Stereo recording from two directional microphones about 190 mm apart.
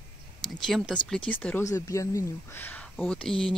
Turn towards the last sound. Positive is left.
turn(degrees=0)  # may be behind; listen again after turning